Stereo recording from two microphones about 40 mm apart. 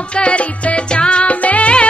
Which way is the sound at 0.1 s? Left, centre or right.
Left.